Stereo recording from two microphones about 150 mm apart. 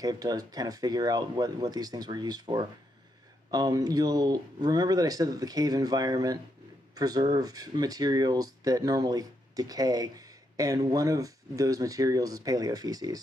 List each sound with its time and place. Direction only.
0.0 s speech: 25° right (ahead or behind)